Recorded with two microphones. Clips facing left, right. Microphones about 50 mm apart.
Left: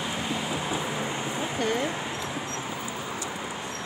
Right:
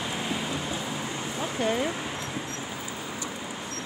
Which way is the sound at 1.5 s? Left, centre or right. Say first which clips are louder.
Right 1 dB; centre.